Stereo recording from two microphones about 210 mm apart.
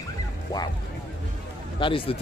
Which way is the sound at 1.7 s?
25° left (ahead or behind).